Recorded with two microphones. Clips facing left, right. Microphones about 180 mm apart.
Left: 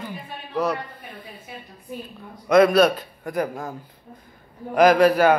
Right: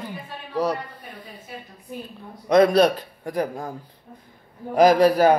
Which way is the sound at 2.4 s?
30° right (ahead or behind).